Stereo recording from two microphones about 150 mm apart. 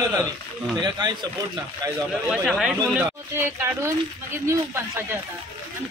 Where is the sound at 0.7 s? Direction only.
30° right (ahead or behind).